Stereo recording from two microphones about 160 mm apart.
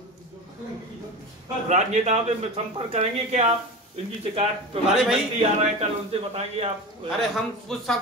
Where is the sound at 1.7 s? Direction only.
45° right (ahead or behind).